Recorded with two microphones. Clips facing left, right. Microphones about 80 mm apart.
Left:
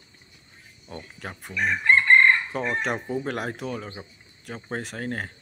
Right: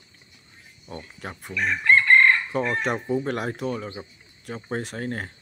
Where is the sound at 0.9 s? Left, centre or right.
Centre.